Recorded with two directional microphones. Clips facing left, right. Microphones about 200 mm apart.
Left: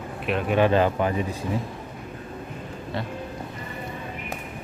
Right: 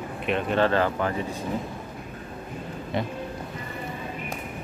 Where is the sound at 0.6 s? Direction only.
15° left (ahead or behind).